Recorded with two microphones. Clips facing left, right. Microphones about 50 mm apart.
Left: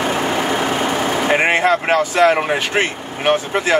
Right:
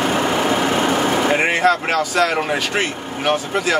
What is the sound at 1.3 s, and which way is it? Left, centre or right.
Speech, left.